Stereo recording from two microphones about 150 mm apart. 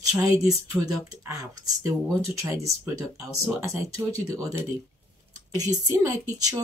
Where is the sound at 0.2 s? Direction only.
25° right (ahead or behind).